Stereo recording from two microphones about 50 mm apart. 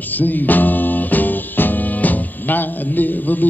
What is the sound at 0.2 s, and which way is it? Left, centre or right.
Music, left.